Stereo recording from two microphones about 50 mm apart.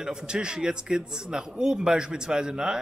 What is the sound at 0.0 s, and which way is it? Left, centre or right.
Speech, centre.